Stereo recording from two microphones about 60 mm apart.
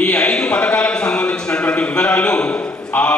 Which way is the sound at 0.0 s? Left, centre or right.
Centre.